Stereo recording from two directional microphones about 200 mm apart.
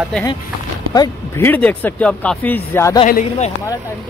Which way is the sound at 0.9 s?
15° left (ahead or behind).